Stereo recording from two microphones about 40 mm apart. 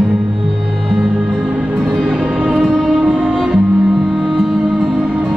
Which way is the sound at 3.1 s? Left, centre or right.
Centre.